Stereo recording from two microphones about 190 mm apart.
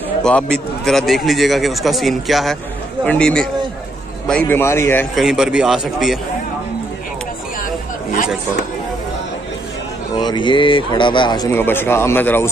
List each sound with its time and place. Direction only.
0.2 s a man's voice: 5° left (ahead or behind)
5.1 s a man's voice: centre (ahead or behind)
7.6 s chatter: 45° left (ahead or behind)
10.1 s speech: 25° left (ahead or behind)
11.5 s a man's voice: 10° left (ahead or behind)